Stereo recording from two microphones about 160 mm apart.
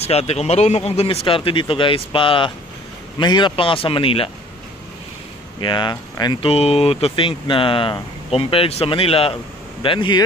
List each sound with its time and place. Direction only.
0.0 s speech: 40° left (ahead or behind)
5.6 s speech: 30° left (ahead or behind)
6.5 s speech: 40° left (ahead or behind)